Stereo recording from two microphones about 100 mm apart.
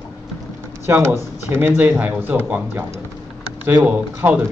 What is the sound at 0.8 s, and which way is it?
A man's voice, 25° right (ahead or behind).